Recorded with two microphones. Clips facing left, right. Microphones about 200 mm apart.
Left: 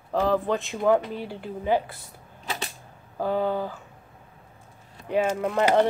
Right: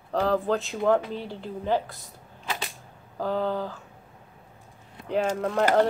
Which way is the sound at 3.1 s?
5° left (ahead or behind).